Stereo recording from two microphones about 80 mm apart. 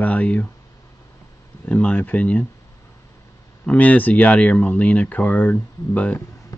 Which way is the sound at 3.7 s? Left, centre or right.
Centre.